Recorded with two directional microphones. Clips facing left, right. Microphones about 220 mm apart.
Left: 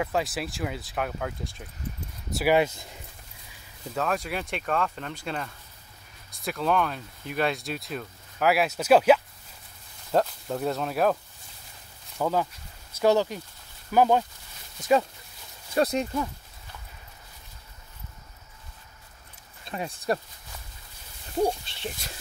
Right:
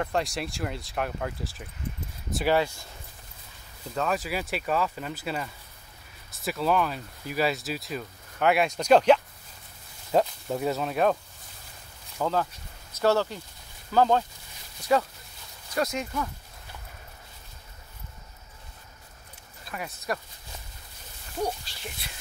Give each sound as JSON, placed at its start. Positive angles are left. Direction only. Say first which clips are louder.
{"t": 0.0, "sound": "speech", "louder": "left 1 dB", "side_deg": 5}
{"t": 2.4, "sound": "speech", "louder": "left 2 dB", "side_deg": 20}
{"t": 3.9, "sound": "speech", "louder": "even", "side_deg": 0}
{"t": 12.2, "sound": "speech", "louder": "left 1 dB", "side_deg": 10}
{"t": 15.7, "sound": "speech", "louder": "left 4 dB", "side_deg": 35}
{"t": 19.6, "sound": "speech", "louder": "left 4 dB", "side_deg": 30}
{"t": 21.4, "sound": "speech", "louder": "left 5 dB", "side_deg": 25}